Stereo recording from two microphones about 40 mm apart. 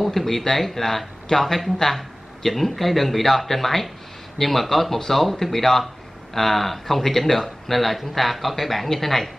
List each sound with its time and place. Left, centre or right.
0.0 s speech: centre